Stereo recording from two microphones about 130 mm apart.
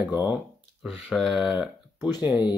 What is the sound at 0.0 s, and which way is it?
Speech, 15° right (ahead or behind).